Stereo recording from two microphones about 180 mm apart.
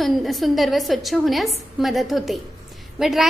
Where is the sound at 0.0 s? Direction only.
Centre (ahead or behind).